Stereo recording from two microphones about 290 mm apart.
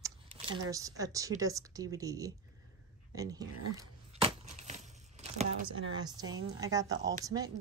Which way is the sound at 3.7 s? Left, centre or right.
Centre.